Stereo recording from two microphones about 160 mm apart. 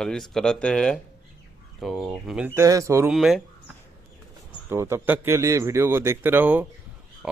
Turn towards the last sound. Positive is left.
turn(degrees=-10)  # may be behind; listen again after turning